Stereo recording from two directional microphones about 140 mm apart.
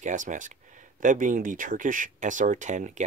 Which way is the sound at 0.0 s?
65° right (ahead or behind).